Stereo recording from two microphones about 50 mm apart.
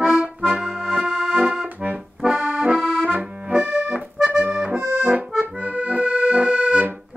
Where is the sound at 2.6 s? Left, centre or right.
Right.